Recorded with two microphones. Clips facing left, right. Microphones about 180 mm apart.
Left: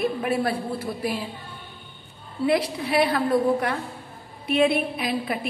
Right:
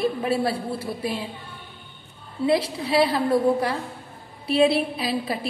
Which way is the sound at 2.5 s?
25° right (ahead or behind).